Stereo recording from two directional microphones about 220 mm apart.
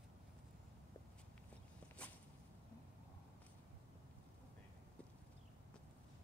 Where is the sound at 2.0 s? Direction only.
5° left (ahead or behind).